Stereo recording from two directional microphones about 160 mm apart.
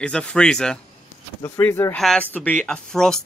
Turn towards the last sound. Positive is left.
turn(degrees=5)  # may be behind; listen again after turning